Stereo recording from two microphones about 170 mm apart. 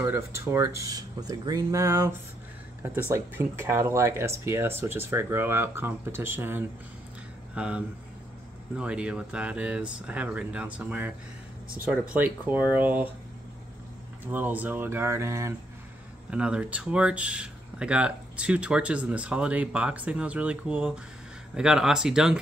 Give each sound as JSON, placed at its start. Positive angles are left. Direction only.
{"t": 0.0, "sound": "speech", "side_deg": -15}
{"t": 14.2, "sound": "speech", "side_deg": -10}
{"t": 16.3, "sound": "speech", "side_deg": -5}